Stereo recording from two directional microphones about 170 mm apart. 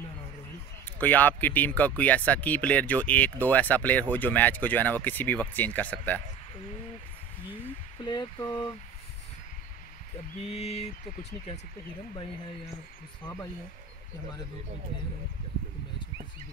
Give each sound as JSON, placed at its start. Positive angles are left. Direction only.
{"t": 0.8, "sound": "speech", "side_deg": 10}
{"t": 8.0, "sound": "a sound", "side_deg": 25}
{"t": 10.4, "sound": "speech", "side_deg": 40}